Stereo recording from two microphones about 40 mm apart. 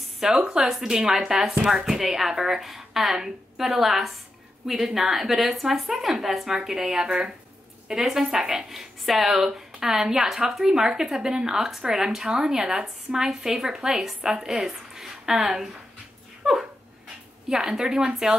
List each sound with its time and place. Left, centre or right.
0.2 s speech: centre
1.9 s a woman's voice: centre
7.9 s speech: centre
16.4 s dog: centre
17.5 s speech: centre